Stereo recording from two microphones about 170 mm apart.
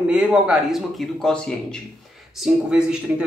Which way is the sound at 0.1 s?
5° right (ahead or behind).